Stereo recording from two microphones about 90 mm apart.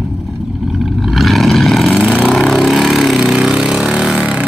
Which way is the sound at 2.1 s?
5° right (ahead or behind).